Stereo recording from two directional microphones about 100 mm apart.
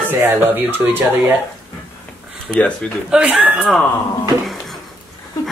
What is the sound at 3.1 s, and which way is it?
Speech, 10° right (ahead or behind).